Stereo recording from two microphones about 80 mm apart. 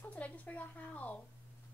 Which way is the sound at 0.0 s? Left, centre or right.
Centre.